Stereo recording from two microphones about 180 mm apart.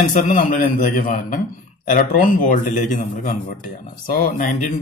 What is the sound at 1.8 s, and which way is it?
Speech, 45° left (ahead or behind).